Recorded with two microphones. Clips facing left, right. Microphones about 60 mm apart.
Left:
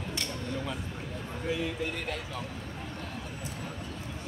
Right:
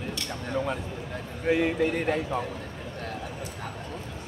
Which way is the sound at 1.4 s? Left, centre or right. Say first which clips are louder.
Right 9 dB; right.